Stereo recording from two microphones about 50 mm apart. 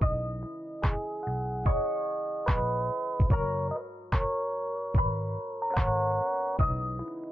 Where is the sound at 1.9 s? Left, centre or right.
Centre.